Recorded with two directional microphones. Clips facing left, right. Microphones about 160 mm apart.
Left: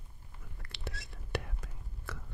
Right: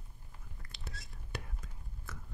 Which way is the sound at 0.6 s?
70° left (ahead or behind).